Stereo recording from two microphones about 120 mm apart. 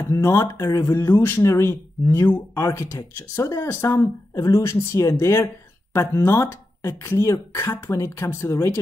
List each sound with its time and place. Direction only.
0.1 s speech: 25° left (ahead or behind)